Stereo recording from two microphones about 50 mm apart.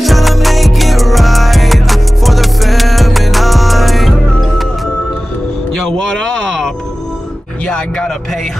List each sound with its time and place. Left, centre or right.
0.0 s music: centre
5.8 s a sound: centre
7.6 s music: centre